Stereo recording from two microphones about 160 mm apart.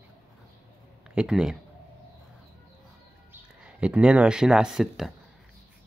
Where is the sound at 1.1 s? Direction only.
5° right (ahead or behind).